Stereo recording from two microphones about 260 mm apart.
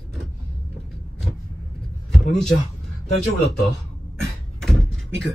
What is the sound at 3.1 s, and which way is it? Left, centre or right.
Speech, left.